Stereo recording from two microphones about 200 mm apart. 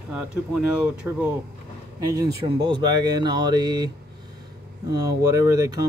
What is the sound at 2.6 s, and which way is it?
Speech, 20° right (ahead or behind).